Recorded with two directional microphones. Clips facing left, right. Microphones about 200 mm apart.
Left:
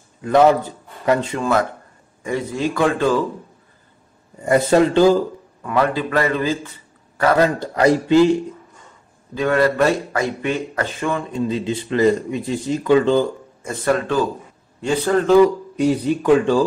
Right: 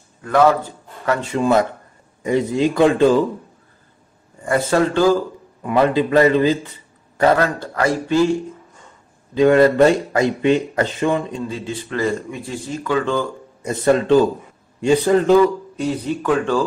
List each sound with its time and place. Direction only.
0.2 s speech: 20° left (ahead or behind)
1.4 s speech: 20° right (ahead or behind)
4.4 s speech: 20° left (ahead or behind)
5.6 s speech: 20° right (ahead or behind)
7.3 s speech: 20° left (ahead or behind)
9.3 s speech: 20° right (ahead or behind)
11.4 s speech: 20° left (ahead or behind)
13.6 s a man's voice: 20° right (ahead or behind)
15.8 s speech: 15° left (ahead or behind)